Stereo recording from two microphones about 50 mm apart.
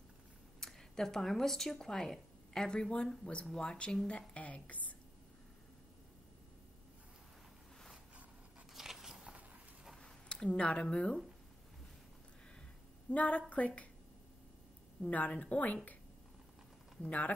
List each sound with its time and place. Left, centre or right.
0.6 s speech: centre; by 4.9 s left
8.7 s biting: centre
10.0 s speech: centre
13.1 s a woman's voice: left
15.0 s a woman's voice: left
17.0 s a woman's voice: left